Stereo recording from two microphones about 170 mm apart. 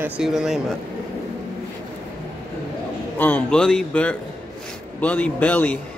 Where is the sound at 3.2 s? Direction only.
10° left (ahead or behind).